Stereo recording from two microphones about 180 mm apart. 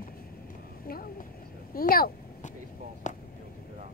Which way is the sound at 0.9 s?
55° left (ahead or behind).